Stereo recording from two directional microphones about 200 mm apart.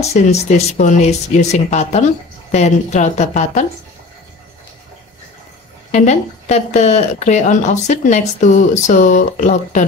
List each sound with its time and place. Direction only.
0.0 s speech: 35° left (ahead or behind)
5.9 s speech: 35° left (ahead or behind)